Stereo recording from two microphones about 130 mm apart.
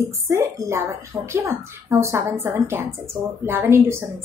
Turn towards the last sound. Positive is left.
turn(degrees=-20)  # may be behind; listen again after turning